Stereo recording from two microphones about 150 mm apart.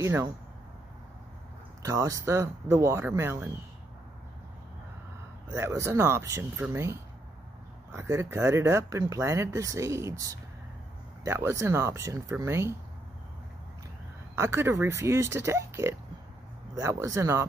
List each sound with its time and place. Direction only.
0.0 s speech: 20° right (ahead or behind)
1.8 s speech: 20° right (ahead or behind)
5.5 s speech: 20° right (ahead or behind)
14.3 s speech: 20° right (ahead or behind)